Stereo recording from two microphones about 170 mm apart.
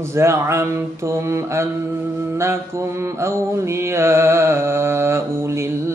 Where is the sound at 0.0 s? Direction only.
15° right (ahead or behind).